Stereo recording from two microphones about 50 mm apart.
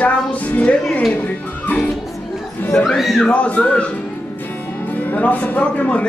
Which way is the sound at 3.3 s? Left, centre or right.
Left.